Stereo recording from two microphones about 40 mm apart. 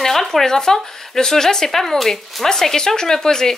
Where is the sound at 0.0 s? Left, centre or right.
Centre.